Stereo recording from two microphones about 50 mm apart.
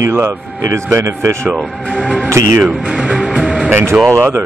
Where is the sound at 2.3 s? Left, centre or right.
Right.